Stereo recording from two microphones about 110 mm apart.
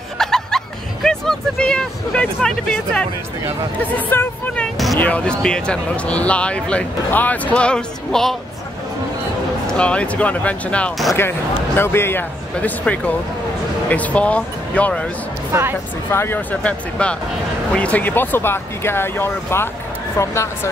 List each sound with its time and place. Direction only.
0.2 s speech: 5° left (ahead or behind)
9.7 s speech: 10° left (ahead or behind)
16.1 s speech: 20° left (ahead or behind)